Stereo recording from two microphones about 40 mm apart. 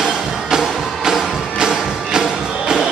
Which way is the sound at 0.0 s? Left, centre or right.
Centre.